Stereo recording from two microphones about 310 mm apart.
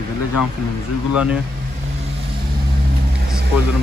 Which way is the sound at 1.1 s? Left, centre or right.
Centre.